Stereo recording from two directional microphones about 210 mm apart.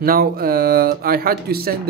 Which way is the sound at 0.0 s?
45° right (ahead or behind).